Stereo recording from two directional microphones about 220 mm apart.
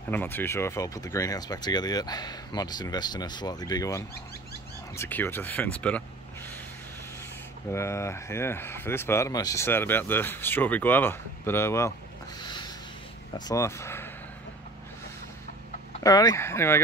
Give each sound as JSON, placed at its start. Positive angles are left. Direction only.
{"t": 0.1, "sound": "speech", "side_deg": 10}
{"t": 7.7, "sound": "speech", "side_deg": 10}
{"t": 12.4, "sound": "a sound", "side_deg": 20}
{"t": 13.5, "sound": "speech", "side_deg": 15}
{"t": 16.0, "sound": "speech", "side_deg": 15}